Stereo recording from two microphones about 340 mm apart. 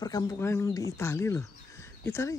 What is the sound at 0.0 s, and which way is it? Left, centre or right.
Speech, centre.